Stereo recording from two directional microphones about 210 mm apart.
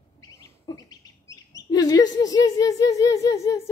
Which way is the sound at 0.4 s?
15° left (ahead or behind).